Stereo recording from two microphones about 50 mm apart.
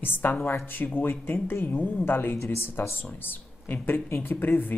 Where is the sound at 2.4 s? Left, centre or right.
Left.